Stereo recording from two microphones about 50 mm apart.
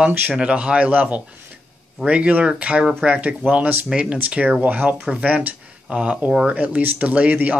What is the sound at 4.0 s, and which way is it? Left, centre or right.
Speech, right.